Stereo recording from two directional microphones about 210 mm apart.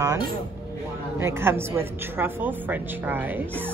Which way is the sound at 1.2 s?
10° right (ahead or behind).